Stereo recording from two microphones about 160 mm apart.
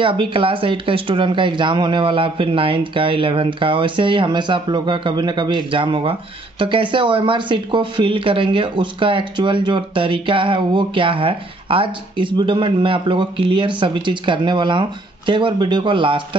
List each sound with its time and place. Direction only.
0.0 s speech: 35° right (ahead or behind)